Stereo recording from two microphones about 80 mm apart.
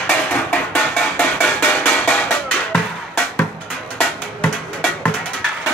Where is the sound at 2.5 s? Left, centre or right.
Centre.